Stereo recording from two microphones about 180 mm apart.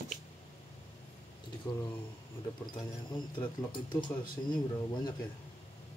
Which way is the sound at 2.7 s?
25° left (ahead or behind).